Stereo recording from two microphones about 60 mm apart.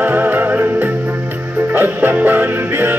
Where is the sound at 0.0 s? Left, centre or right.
Right.